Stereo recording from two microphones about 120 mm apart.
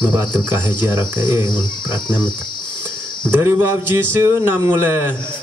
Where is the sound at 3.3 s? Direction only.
20° right (ahead or behind).